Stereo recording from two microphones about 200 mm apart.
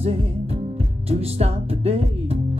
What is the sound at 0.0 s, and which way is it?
Music, 30° right (ahead or behind).